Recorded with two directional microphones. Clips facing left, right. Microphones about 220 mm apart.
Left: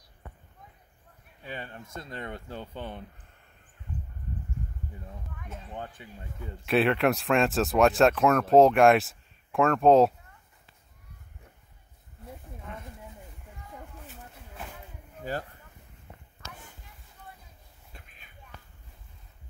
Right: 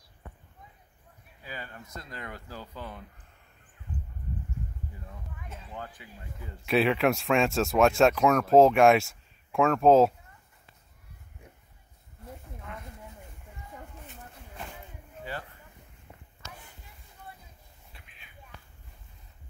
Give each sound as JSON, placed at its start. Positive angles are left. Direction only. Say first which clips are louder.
{"t": 1.5, "sound": "speech", "louder": "left 3 dB", "side_deg": 25}
{"t": 5.7, "sound": "speech", "louder": "left 2 dB", "side_deg": 25}
{"t": 6.6, "sound": "speech", "louder": "even", "side_deg": 0}
{"t": 14.0, "sound": "a sound", "louder": "even", "side_deg": 5}
{"t": 15.3, "sound": "speech", "louder": "left 5 dB", "side_deg": 40}
{"t": 17.9, "sound": "a sound", "louder": "left 5 dB", "side_deg": 45}